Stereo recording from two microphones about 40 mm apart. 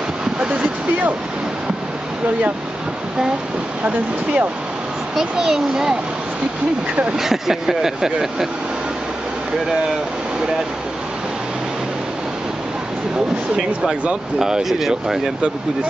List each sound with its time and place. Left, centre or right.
0.5 s vehicle: right
3.8 s speech: right
5.1 s speech: centre
7.2 s speech: centre
14.4 s speech: centre